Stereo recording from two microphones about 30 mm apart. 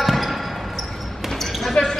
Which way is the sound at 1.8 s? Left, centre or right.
Left.